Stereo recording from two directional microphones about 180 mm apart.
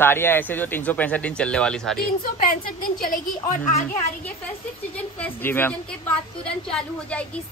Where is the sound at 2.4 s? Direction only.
50° left (ahead or behind).